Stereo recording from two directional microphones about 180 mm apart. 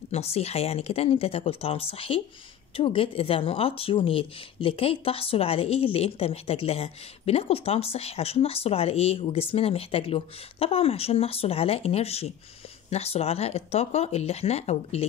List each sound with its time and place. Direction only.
0.1 s speech: 35° left (ahead or behind)